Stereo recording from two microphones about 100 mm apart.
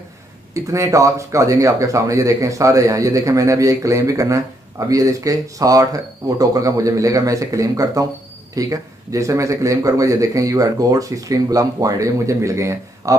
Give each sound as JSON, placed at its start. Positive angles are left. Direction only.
{"t": 0.7, "sound": "speech", "side_deg": -35}